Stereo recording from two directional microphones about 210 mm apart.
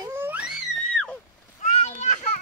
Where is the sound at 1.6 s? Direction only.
35° left (ahead or behind).